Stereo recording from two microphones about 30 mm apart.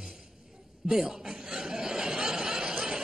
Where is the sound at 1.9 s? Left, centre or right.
Right.